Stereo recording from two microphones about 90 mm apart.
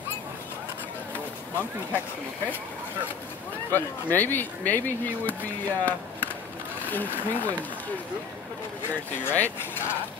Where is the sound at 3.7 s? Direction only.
20° left (ahead or behind).